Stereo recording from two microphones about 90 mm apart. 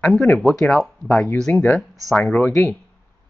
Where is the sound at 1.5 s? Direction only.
20° left (ahead or behind).